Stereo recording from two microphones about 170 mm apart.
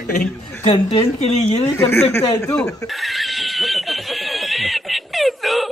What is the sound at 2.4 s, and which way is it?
Snicker, 5° left (ahead or behind).